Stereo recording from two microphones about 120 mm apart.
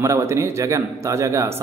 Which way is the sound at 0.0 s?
25° right (ahead or behind).